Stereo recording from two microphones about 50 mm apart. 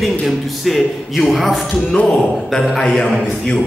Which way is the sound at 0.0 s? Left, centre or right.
Centre.